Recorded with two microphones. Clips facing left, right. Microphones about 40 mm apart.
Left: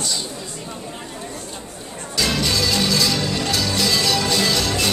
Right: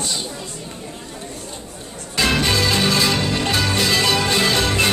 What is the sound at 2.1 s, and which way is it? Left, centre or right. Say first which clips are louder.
Music: right 3 dB; right.